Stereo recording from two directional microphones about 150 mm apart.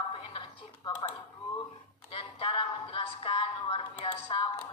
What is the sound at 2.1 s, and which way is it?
Music, 35° left (ahead or behind).